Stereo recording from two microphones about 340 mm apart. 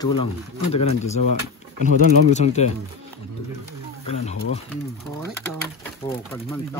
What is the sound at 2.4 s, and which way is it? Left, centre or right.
Speech, centre.